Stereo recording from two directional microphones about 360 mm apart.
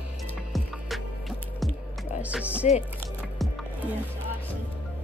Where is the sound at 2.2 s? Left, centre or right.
Centre.